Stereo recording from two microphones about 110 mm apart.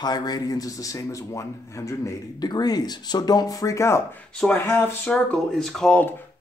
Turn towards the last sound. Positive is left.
turn(degrees=5)  # may be behind; listen again after turning